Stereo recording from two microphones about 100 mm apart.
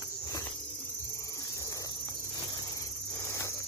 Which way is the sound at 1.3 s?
35° left (ahead or behind).